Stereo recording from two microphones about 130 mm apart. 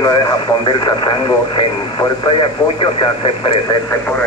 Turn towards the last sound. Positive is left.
turn(degrees=40)  # may be behind; listen again after turning